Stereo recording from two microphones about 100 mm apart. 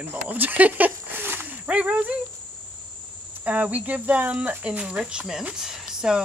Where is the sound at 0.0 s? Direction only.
20° right (ahead or behind).